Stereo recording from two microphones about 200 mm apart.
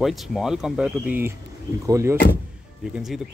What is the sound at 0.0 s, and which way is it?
Speech, centre (ahead or behind).